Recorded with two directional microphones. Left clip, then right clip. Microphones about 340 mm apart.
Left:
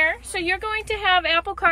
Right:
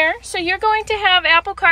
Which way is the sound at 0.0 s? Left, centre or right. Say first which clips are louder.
Right 4 dB; centre.